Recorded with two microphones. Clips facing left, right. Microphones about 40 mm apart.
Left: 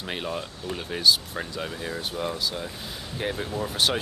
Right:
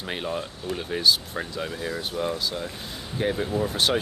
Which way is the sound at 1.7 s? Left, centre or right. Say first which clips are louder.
Right 2 dB; left.